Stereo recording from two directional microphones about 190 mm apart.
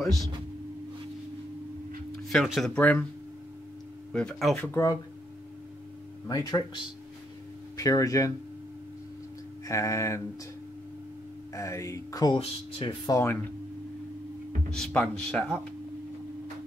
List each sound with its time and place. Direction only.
2.2 s speech: centre (ahead or behind)
4.1 s speech: 5° left (ahead or behind)
6.2 s speech: 20° left (ahead or behind)
9.7 s speech: 15° left (ahead or behind)
11.5 s speech: 15° left (ahead or behind)
14.7 s speech: 5° left (ahead or behind)